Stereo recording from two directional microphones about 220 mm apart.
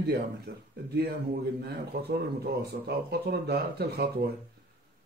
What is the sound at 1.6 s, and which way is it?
Speech, 45° right (ahead or behind).